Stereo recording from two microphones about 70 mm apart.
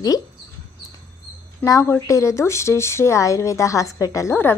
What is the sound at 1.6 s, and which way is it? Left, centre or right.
Speech, left.